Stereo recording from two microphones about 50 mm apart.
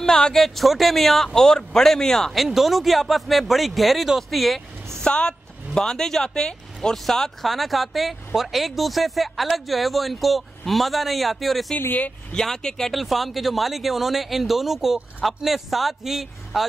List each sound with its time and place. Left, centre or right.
0.0 s speech: centre
2.3 s speech: centre
5.0 s a woman's voice: centre
12.3 s speech: centre
12.9 s speech: centre